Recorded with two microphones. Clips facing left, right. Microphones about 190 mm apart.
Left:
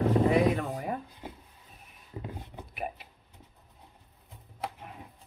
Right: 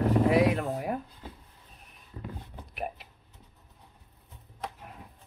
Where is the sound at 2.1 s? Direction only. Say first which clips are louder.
Left 2 dB; 20° left (ahead or behind).